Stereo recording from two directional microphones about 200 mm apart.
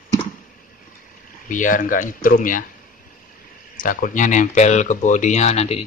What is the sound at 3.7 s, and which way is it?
Speech, 45° left (ahead or behind).